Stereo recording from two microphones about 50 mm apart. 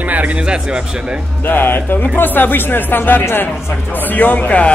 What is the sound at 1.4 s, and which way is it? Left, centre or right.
Speech, left.